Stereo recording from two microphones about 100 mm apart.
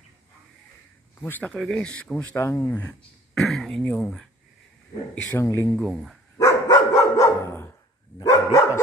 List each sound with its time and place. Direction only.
1.2 s speech: 20° left (ahead or behind)
1.5 s speech: centre (ahead or behind)
1.8 s speech: 15° left (ahead or behind)
2.3 s speech: 25° left (ahead or behind)
3.3 s speech: 5° left (ahead or behind)
5.4 s speech: 30° left (ahead or behind)
5.8 s speech: centre (ahead or behind)
6.3 s dog: 30° left (ahead or behind)
8.2 s dog: 45° left (ahead or behind)